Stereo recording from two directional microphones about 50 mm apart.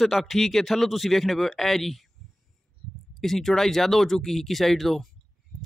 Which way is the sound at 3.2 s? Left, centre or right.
Centre.